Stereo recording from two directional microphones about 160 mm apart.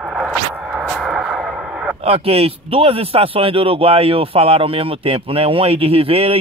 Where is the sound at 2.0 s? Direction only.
40° right (ahead or behind).